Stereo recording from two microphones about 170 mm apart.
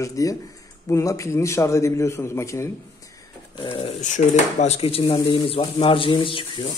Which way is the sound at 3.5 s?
30° left (ahead or behind).